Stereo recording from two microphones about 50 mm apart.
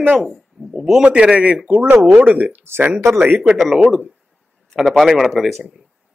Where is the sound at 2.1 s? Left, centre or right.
Right.